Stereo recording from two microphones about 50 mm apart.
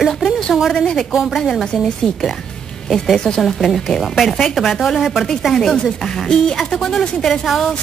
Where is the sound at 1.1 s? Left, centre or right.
Centre.